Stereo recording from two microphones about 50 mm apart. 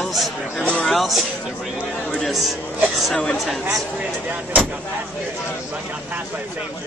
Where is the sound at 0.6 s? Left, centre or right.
Left.